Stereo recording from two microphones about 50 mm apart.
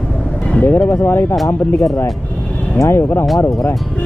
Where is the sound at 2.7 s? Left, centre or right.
Left.